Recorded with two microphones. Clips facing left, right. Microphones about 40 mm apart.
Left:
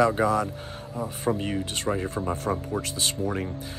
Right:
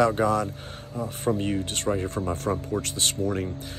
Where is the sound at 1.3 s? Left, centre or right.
Centre.